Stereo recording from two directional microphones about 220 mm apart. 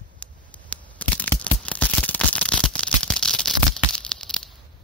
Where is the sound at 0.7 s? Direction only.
5° left (ahead or behind).